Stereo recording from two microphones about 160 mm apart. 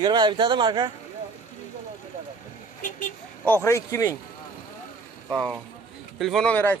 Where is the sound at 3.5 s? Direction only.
15° left (ahead or behind).